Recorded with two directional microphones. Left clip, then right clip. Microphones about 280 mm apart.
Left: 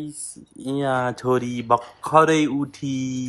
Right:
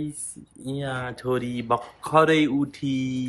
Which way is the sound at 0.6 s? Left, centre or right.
Left.